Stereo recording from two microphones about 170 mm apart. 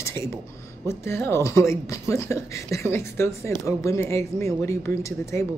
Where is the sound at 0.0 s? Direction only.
15° left (ahead or behind).